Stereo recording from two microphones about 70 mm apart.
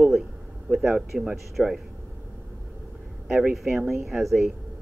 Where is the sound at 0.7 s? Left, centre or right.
Centre.